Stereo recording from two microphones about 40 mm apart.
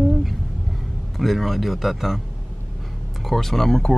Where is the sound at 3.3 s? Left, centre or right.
Centre.